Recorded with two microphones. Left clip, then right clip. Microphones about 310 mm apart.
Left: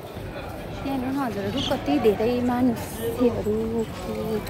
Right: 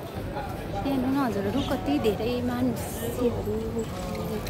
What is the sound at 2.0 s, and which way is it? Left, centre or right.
Speech, centre.